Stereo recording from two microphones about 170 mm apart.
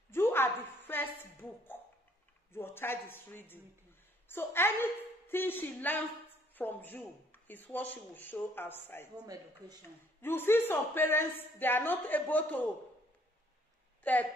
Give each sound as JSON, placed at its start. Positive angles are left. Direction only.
{"t": 0.1, "sound": "a sound", "side_deg": 15}
{"t": 2.5, "sound": "a man's voice", "side_deg": 15}
{"t": 9.2, "sound": "speech", "side_deg": -20}
{"t": 9.8, "sound": "a man's voice", "side_deg": 15}
{"t": 14.0, "sound": "a man's voice", "side_deg": 10}